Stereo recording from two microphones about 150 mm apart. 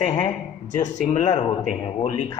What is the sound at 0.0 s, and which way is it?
Speech, 50° left (ahead or behind).